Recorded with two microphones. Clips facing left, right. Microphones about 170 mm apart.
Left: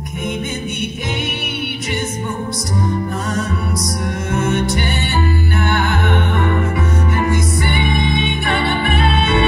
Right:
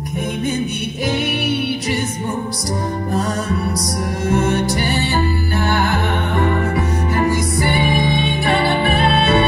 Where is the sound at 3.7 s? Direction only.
35° right (ahead or behind).